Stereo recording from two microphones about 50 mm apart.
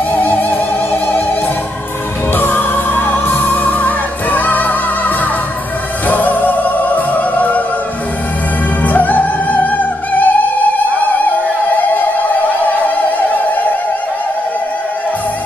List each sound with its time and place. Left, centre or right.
0.1 s music: left
2.3 s music: left
8.8 s music: left
12.8 s music: left